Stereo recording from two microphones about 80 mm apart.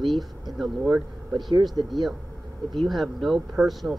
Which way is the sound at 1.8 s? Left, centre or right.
Right.